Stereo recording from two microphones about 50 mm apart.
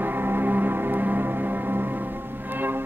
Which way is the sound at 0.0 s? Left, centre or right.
Right.